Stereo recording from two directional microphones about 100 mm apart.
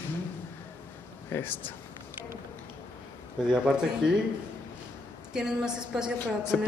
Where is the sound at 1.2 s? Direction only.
25° left (ahead or behind).